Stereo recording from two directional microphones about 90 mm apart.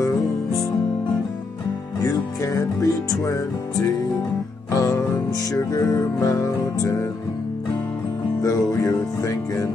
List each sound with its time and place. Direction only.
2.0 s music: 40° left (ahead or behind)
4.7 s music: 40° left (ahead or behind)
8.4 s music: 40° left (ahead or behind)